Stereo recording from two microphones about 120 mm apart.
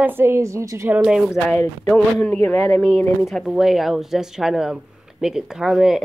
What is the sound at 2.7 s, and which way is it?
Speech, centre (ahead or behind).